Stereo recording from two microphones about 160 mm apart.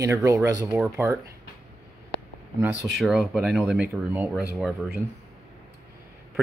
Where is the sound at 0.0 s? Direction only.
20° right (ahead or behind).